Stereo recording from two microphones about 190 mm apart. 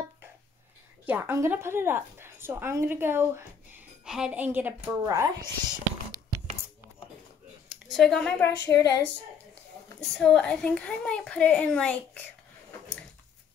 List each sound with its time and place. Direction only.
1.0 s a woman's voice: 10° right (ahead or behind)
7.9 s speech: centre (ahead or behind)
8.6 s speech: 20° left (ahead or behind)
9.9 s speech: 5° left (ahead or behind)